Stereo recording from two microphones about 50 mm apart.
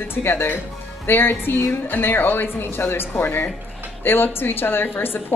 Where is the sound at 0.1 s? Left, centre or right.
Left.